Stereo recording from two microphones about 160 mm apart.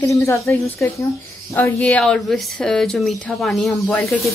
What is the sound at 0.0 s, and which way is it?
Speech, 20° left (ahead or behind).